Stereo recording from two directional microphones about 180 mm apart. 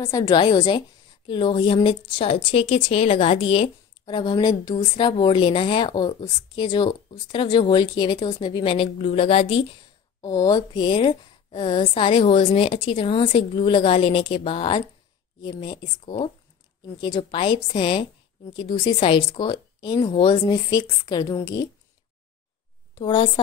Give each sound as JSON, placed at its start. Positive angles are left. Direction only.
{"t": 0.0, "sound": "a woman's voice", "side_deg": 20}
{"t": 10.2, "sound": "a woman's voice", "side_deg": 20}
{"t": 22.9, "sound": "a woman's voice", "side_deg": 25}